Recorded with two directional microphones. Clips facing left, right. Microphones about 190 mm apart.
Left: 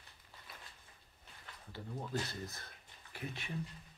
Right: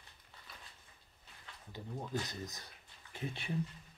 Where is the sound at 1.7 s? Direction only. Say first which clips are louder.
Right 1 dB; 15° right (ahead or behind).